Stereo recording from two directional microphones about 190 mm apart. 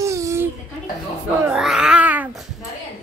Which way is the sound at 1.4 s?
5° right (ahead or behind).